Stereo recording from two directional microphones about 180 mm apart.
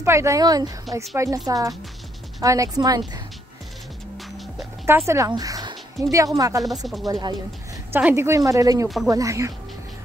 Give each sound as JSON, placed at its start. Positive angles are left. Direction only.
{"t": 0.0, "sound": "a woman's voice", "side_deg": -15}
{"t": 4.8, "sound": "a sound", "side_deg": -15}
{"t": 6.1, "sound": "speech", "side_deg": -20}
{"t": 7.9, "sound": "a woman's voice", "side_deg": -10}